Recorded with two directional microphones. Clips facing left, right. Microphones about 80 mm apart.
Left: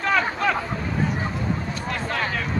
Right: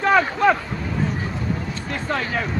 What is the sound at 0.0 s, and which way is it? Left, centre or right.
Boat, right.